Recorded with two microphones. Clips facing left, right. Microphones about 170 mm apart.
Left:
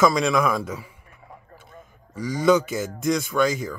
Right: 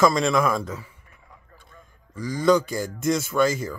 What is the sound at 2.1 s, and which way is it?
Speech, 5° left (ahead or behind).